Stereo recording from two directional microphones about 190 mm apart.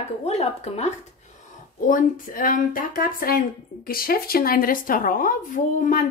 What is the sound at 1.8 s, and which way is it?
A woman's voice, 45° left (ahead or behind).